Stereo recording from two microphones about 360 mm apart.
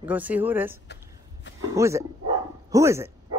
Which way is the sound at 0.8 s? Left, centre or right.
Left.